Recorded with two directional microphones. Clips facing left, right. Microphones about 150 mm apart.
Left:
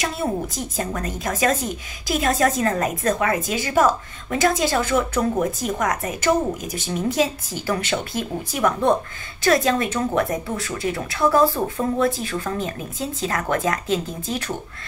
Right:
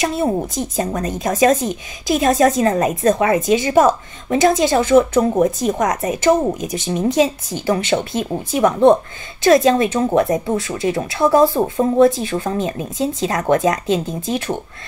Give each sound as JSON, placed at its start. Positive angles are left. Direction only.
{"t": 0.7, "sound": "a woman's voice", "side_deg": -25}